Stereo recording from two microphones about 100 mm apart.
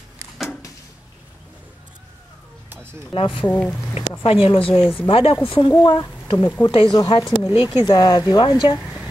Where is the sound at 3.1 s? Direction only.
60° left (ahead or behind).